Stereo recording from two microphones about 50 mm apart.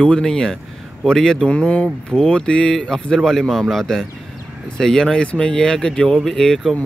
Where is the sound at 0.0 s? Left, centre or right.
Centre.